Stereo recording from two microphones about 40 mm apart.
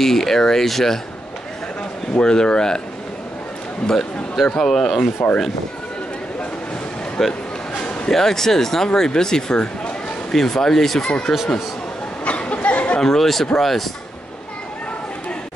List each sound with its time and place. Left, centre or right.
0.0 s speech: centre
2.1 s speech: left
3.8 s speech: centre
7.2 s speech: centre
12.3 s a sound: left
13.0 s speech: centre